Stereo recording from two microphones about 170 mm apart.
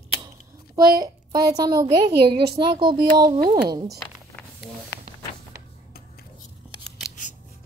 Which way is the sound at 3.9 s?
Centre (ahead or behind).